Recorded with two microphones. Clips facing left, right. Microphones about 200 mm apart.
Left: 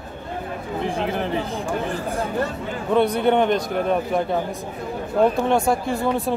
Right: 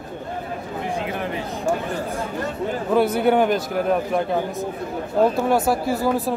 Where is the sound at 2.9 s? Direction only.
5° right (ahead or behind).